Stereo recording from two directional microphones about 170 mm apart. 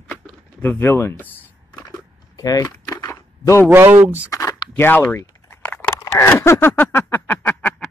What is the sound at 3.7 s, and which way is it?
Speech, 15° right (ahead or behind).